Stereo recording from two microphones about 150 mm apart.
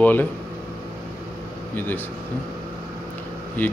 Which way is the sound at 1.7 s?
10° left (ahead or behind).